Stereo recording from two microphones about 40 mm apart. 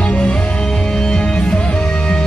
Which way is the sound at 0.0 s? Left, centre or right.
Left.